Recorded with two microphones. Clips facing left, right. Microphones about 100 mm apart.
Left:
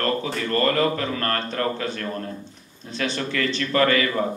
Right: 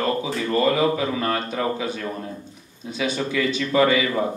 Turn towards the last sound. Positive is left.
turn(degrees=-10)  # may be behind; listen again after turning